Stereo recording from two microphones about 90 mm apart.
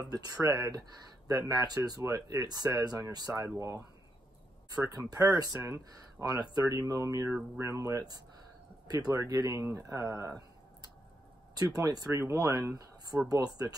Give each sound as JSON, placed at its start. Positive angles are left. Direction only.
{"t": 0.0, "sound": "speech", "side_deg": -45}
{"t": 3.3, "sound": "speech", "side_deg": -35}
{"t": 4.8, "sound": "speech", "side_deg": -45}
{"t": 11.5, "sound": "speech", "side_deg": -45}